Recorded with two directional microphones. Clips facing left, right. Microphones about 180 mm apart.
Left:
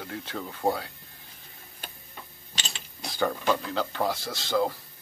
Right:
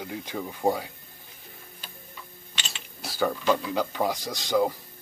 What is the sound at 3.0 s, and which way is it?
Tick-tock, 5° right (ahead or behind).